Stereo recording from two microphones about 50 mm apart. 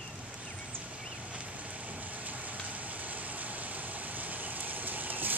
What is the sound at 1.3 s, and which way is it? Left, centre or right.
Rain, right.